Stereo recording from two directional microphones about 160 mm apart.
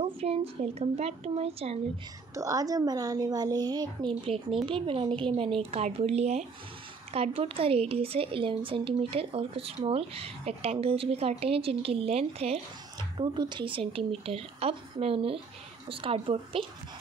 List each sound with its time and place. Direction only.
0.0 s speech: 35° right (ahead or behind)
2.3 s a woman's voice: 20° right (ahead or behind)